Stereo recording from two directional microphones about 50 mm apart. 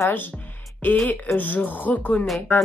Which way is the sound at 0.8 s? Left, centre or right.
Left.